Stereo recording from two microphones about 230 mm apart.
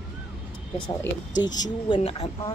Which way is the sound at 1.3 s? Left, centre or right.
Centre.